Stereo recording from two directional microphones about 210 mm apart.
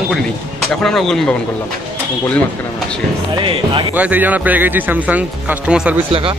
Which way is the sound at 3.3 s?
20° right (ahead or behind).